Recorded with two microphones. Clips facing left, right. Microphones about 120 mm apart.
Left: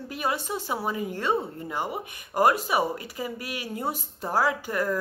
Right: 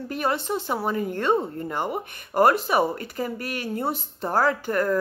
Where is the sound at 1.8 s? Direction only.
45° right (ahead or behind).